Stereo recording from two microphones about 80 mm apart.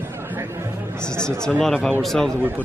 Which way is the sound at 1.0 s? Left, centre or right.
Centre.